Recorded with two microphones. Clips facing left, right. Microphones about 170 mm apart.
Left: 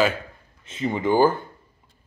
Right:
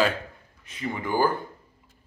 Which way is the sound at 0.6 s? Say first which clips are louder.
Left 7 dB; 25° left (ahead or behind).